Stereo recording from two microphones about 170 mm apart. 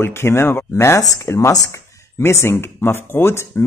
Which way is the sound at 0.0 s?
15° left (ahead or behind).